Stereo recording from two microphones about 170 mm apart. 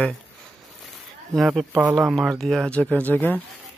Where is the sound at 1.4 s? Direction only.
Centre (ahead or behind).